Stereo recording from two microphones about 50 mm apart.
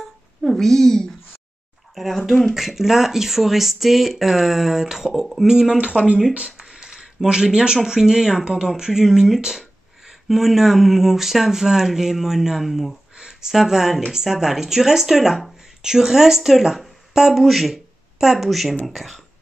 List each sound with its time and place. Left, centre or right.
0.6 s speech: centre
2.5 s speech: centre
5.5 s speech: centre
5.8 s speech: right
6.5 s a sound: centre
7.2 s speech: centre